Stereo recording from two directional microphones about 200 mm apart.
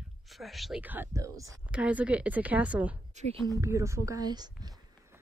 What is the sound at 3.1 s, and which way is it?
Speech, 35° right (ahead or behind).